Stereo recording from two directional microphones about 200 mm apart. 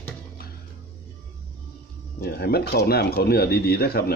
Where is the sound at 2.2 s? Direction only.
55° left (ahead or behind).